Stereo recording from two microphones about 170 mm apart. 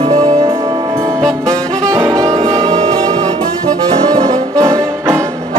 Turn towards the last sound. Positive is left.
turn(degrees=-15)  # may be behind; listen again after turning